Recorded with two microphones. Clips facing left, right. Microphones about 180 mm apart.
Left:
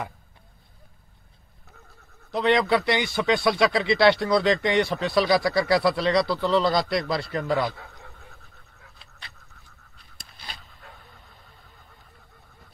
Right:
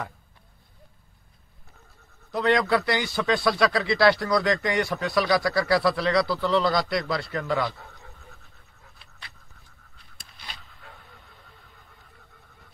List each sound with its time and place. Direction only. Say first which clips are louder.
2.3 s speech: left 1 dB; 20° left (ahead or behind)